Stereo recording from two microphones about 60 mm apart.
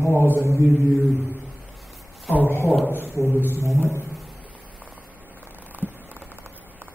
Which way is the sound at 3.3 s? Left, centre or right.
Left.